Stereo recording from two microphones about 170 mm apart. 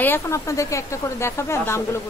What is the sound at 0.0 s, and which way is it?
Speech, 15° left (ahead or behind).